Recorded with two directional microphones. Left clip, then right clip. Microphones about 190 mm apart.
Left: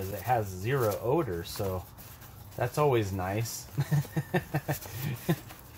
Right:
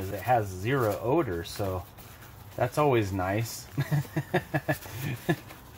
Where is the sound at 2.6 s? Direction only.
35° right (ahead or behind).